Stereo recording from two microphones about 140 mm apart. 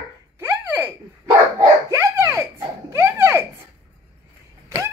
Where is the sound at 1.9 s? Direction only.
20° right (ahead or behind).